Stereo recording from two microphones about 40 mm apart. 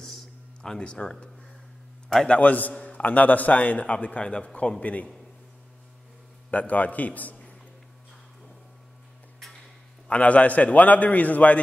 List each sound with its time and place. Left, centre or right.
0.0 s a sound: centre
0.7 s speech: left
2.2 s a man's voice: left
6.7 s a man's voice: left
10.0 s a man's voice: left